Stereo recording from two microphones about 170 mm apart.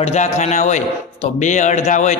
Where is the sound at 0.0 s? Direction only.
40° left (ahead or behind).